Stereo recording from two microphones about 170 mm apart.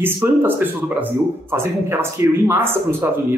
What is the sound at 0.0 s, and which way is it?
A man's voice, 10° right (ahead or behind).